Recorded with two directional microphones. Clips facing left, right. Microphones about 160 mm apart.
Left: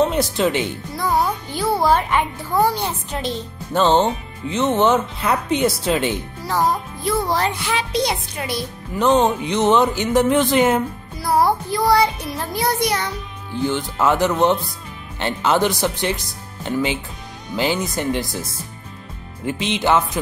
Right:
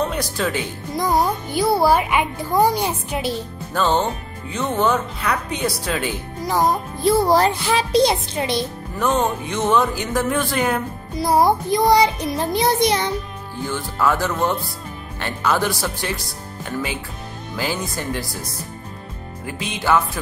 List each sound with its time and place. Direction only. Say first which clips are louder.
0.1 s speech: left 4 dB; 25° left (ahead or behind)
0.9 s a child's voice: right 1 dB; 15° right (ahead or behind)
3.7 s speech: left 4 dB; 25° left (ahead or behind)
7.0 s a child's voice: right 7 dB; 35° right (ahead or behind)
8.9 s speech: left 4 dB; 20° left (ahead or behind)
11.1 s music: right 1 dB; 20° right (ahead or behind)
13.7 s speech: left 2 dB; 20° left (ahead or behind)